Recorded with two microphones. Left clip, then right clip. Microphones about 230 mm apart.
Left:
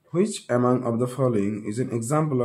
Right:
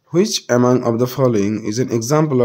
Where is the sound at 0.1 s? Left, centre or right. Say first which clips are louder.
Right 8 dB; right.